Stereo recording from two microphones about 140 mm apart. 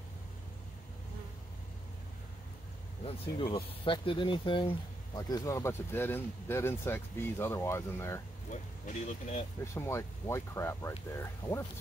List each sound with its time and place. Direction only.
3.0 s speech: 45° left (ahead or behind); by 8.2 s 20° left (ahead or behind)
8.5 s speech: 55° left (ahead or behind)
9.8 s speech: 20° left (ahead or behind)